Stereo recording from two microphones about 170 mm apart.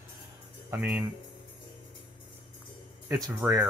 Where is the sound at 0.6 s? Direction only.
10° right (ahead or behind).